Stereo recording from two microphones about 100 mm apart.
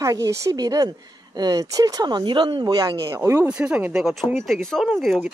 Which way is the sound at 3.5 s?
10° right (ahead or behind).